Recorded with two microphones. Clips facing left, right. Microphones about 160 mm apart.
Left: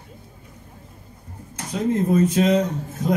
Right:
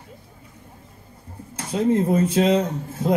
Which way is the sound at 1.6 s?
30° right (ahead or behind).